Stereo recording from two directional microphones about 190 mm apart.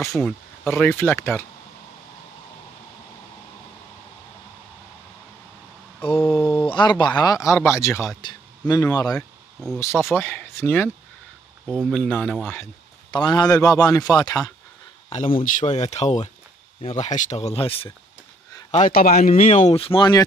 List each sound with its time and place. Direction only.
0.2 s speech: 5° left (ahead or behind)
6.3 s speech: 25° left (ahead or behind)
11.6 s speech: centre (ahead or behind)
13.1 s speech: 20° left (ahead or behind)
15.0 s speech: 30° left (ahead or behind)
18.7 s speech: 45° left (ahead or behind); by 20.2 s 25° left (ahead or behind)